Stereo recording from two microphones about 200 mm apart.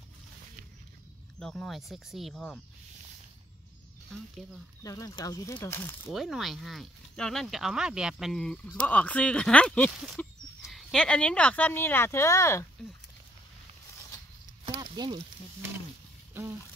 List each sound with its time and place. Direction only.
1.4 s speech: centre (ahead or behind)
4.8 s speech: 15° left (ahead or behind)
6.1 s speech: centre (ahead or behind)
14.6 s a sound: 20° right (ahead or behind)